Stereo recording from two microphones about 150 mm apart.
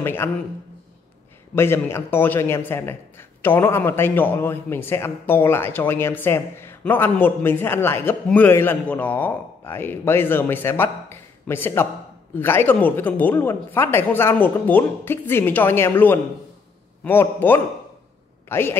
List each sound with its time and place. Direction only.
0.0 s a man's voice: 15° left (ahead or behind)
1.5 s a man's voice: 15° left (ahead or behind)